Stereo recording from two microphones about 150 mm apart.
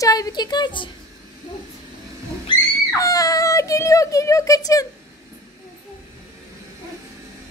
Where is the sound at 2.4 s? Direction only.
25° left (ahead or behind).